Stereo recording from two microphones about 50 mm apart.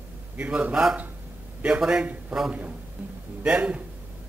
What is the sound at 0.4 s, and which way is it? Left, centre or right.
Speech, right.